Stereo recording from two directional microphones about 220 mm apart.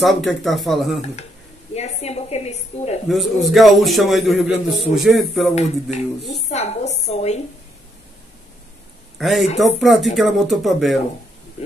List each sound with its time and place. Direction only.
0.0 s a man's voice: centre (ahead or behind)
1.7 s a sound: 30° left (ahead or behind)
3.1 s a man's voice: centre (ahead or behind)
5.5 s speech: 30° left (ahead or behind)
6.5 s a sound: 30° left (ahead or behind)
9.2 s a man's voice: centre (ahead or behind)